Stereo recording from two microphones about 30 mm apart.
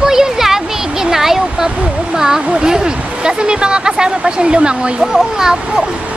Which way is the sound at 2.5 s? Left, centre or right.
Right.